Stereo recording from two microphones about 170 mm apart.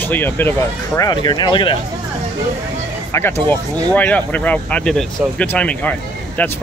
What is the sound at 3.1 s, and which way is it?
Speech, 15° left (ahead or behind).